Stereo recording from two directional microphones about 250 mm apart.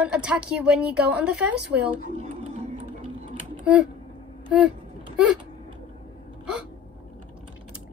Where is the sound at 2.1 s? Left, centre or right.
Right.